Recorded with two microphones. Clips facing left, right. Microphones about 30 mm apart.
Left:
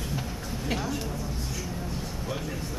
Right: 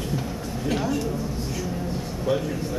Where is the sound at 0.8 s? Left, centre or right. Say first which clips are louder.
Right 6 dB; centre.